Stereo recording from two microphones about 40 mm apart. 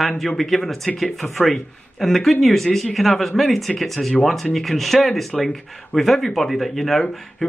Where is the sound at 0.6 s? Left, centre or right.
Centre.